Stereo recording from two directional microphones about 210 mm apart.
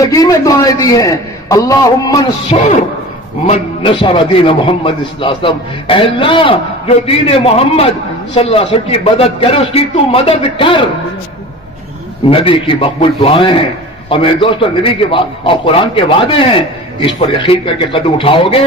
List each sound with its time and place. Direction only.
0.0 s a man's voice: 15° left (ahead or behind)
2.5 s a man's voice: 30° left (ahead or behind)
12.3 s a man's voice: 25° left (ahead or behind)